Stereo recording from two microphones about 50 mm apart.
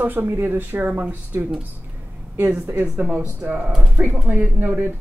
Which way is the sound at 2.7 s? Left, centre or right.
Right.